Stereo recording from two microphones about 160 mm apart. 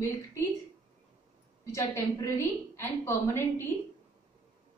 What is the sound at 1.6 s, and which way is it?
A woman's voice, 20° left (ahead or behind).